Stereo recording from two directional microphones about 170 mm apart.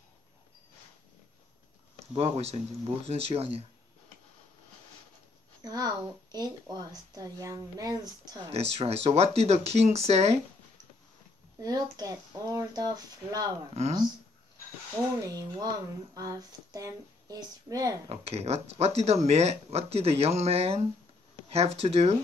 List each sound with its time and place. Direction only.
2.1 s speech: 35° right (ahead or behind)
5.6 s a woman's voice: 20° right (ahead or behind)
8.5 s speech: 35° right (ahead or behind)
11.6 s a woman's voice: 20° right (ahead or behind)
15.1 s a woman's voice: 20° right (ahead or behind)
18.0 s speech: 35° right (ahead or behind)